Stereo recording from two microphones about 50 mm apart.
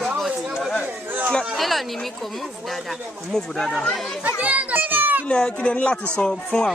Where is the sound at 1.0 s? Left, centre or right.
Right.